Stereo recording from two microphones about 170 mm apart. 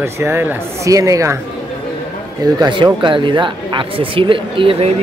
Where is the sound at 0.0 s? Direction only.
15° right (ahead or behind).